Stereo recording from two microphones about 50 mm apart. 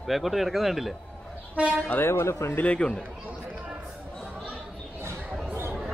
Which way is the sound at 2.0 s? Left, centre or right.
Left.